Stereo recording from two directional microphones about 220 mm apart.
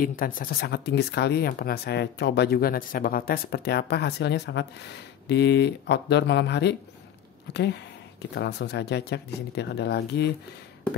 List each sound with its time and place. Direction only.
0.0 s speech: 40° left (ahead or behind)